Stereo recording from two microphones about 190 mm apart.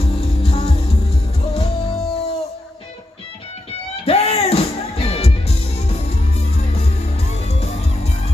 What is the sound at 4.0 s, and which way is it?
Music, 30° left (ahead or behind).